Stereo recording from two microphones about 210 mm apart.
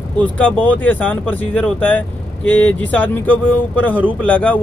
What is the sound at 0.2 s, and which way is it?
Speech, 5° left (ahead or behind).